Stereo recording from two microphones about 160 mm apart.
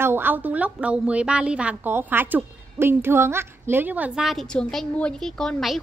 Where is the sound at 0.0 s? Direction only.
15° right (ahead or behind).